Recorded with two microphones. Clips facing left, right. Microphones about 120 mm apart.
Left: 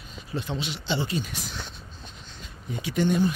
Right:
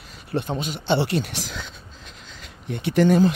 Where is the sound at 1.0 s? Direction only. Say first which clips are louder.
Right 6 dB; 70° right (ahead or behind).